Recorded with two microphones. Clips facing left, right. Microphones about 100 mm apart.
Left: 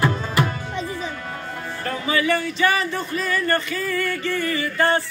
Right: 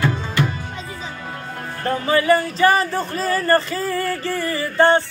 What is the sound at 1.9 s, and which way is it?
Speech, 35° right (ahead or behind).